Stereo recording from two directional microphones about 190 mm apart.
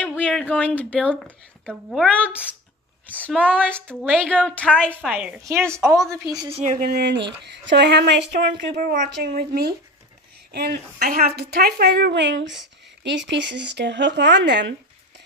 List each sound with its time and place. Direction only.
0.0 s speech: 10° left (ahead or behind)
3.4 s a woman's voice: 5° left (ahead or behind)
5.8 s a woman's voice: 15° right (ahead or behind)
6.6 s speech: 40° right (ahead or behind)
7.0 s speech: 65° right (ahead or behind)
8.7 s speech: 45° right (ahead or behind)
9.1 s a woman's voice: 55° right (ahead or behind)